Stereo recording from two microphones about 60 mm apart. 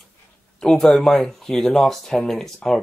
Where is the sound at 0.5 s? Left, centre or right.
Centre.